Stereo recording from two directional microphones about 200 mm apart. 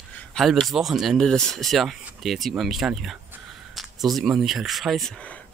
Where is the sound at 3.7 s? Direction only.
Centre (ahead or behind).